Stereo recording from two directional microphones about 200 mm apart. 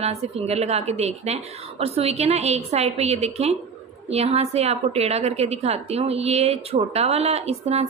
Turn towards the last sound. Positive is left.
turn(degrees=-30)  # may be behind; listen again after turning